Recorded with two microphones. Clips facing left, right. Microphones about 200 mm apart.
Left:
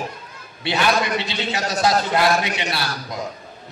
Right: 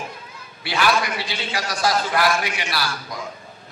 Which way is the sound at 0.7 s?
25° left (ahead or behind).